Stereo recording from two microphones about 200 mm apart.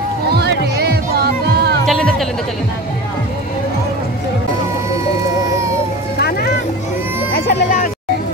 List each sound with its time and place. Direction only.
0.3 s music: 55° right (ahead or behind)
1.9 s music: centre (ahead or behind)
6.1 s music: 50° left (ahead or behind)
7.3 s a sound: 45° left (ahead or behind)